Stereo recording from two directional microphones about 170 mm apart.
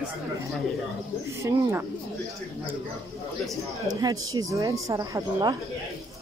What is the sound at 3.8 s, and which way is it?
Speech, 20° right (ahead or behind).